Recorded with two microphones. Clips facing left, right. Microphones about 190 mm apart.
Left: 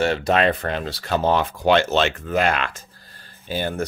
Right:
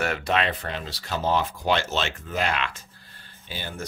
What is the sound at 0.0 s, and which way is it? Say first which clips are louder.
Speech: left 6 dB; 30° left (ahead or behind).